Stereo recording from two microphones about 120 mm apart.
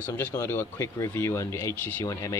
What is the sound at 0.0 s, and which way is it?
Speech, 15° left (ahead or behind).